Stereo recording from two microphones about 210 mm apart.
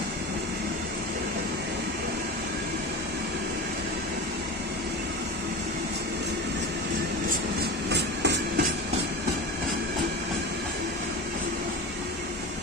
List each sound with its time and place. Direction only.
7.9 s music: 55° right (ahead or behind)